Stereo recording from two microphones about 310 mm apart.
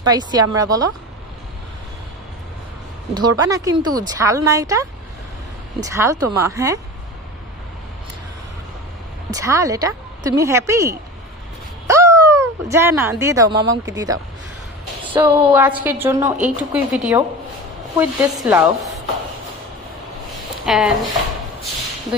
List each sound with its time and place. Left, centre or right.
0.0 s a woman's voice: centre
3.2 s a woman's voice: centre
9.3 s a woman's voice: centre
15.2 s a woman's voice: centre
20.6 s speech: centre